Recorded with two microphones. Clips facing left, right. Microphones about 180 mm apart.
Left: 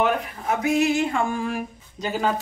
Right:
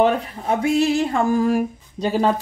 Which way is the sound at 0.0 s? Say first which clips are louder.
Right 5 dB; 30° right (ahead or behind).